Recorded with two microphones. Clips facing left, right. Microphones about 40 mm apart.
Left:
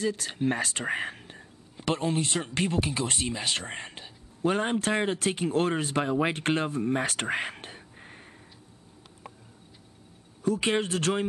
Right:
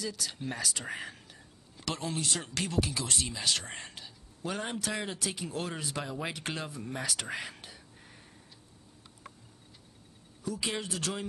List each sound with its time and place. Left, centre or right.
0.0 s speech: left
1.8 s speech: left
4.5 s speech: left
10.4 s speech: left